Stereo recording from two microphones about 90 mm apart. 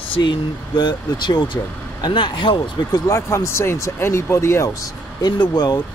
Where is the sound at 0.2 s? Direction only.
55° left (ahead or behind).